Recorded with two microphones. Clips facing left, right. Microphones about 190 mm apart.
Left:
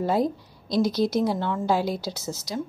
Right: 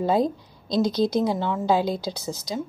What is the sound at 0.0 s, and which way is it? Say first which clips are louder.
A woman's voice: right 2 dB; 20° right (ahead or behind).